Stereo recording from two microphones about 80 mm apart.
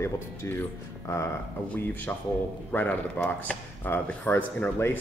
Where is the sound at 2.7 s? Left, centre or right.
Centre.